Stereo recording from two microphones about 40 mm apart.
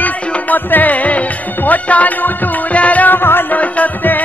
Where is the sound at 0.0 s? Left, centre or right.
Left.